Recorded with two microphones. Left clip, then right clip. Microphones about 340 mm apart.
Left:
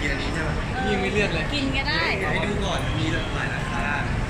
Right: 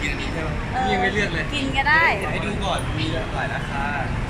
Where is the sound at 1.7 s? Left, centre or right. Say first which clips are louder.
Right 9 dB; right.